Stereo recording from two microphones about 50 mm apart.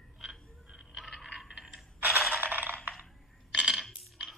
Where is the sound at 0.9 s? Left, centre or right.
Centre.